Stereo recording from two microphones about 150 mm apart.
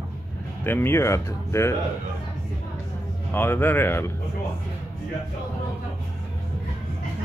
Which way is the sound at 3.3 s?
15° left (ahead or behind).